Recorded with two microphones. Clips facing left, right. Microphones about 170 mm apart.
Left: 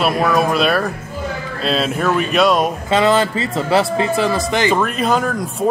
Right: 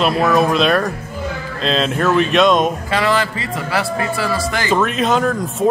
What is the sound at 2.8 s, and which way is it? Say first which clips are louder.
Speech: left 3 dB; 25° left (ahead or behind).